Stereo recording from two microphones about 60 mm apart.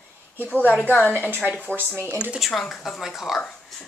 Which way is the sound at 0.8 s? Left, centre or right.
Left.